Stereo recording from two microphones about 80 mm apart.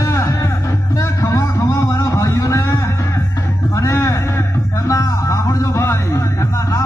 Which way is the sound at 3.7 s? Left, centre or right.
Left.